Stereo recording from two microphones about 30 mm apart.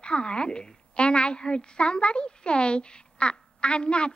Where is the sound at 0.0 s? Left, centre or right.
Left.